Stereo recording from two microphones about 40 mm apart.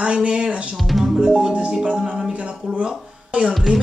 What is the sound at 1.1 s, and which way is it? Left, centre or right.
A woman's voice, centre.